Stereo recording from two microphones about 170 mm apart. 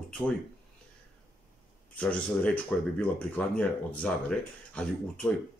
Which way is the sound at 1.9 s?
10° left (ahead or behind).